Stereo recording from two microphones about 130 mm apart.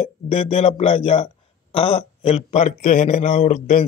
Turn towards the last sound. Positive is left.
turn(degrees=65)  # may be behind; listen again after turning